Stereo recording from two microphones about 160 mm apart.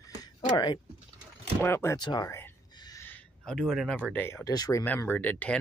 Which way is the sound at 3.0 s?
10° left (ahead or behind).